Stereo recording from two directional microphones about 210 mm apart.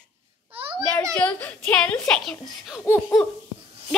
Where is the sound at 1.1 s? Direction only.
5° left (ahead or behind).